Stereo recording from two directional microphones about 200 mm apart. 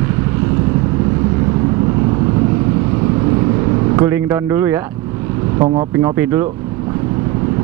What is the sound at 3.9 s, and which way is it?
Speech, 15° right (ahead or behind).